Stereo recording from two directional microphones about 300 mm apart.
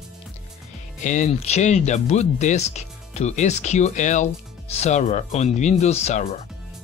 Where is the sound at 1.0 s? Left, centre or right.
Left.